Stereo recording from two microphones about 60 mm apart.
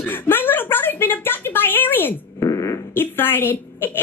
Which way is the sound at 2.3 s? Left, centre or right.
Left.